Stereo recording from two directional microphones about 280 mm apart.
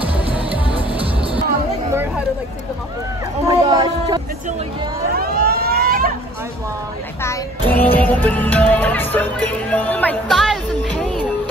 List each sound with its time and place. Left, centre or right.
0.7 s music: centre
3.4 s a sound: centre
5.1 s vehicle: right
7.2 s music: centre